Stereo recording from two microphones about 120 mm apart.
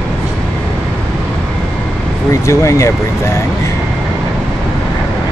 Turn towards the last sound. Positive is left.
turn(degrees=25)  # may be behind; listen again after turning